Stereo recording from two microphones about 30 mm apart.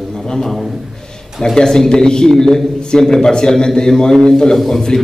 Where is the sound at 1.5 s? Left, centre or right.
Centre.